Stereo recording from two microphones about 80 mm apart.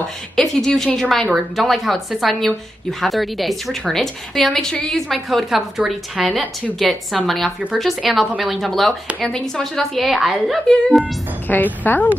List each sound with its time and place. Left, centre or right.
0.4 s a woman's voice: centre
11.4 s speech: left